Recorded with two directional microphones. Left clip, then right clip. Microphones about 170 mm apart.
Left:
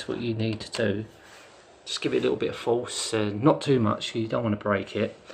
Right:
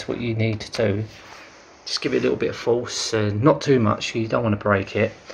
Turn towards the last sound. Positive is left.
turn(degrees=0)  # may be behind; listen again after turning